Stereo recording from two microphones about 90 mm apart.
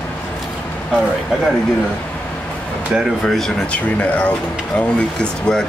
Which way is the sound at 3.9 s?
20° left (ahead or behind).